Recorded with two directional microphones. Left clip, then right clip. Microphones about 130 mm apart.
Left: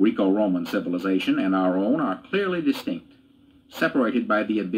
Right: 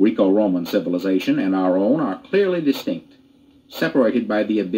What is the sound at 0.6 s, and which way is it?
Speech, 30° left (ahead or behind).